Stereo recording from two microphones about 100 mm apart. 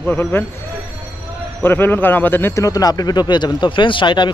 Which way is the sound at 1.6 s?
20° left (ahead or behind).